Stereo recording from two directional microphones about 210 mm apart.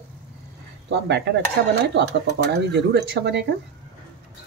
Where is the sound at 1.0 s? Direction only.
55° right (ahead or behind).